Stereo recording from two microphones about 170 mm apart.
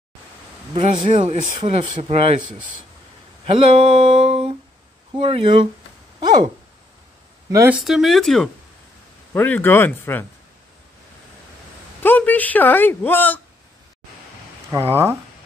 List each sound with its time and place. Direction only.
0.7 s speech: 30° right (ahead or behind)
3.4 s speech: 35° right (ahead or behind)
6.1 s a sound: 25° right (ahead or behind)
7.8 s speech: centre (ahead or behind)
12.0 s a woman's voice: 10° left (ahead or behind)
14.7 s speech: 15° right (ahead or behind)